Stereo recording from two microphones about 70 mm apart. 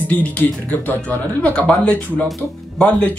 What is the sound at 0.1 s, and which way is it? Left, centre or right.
Speech, left.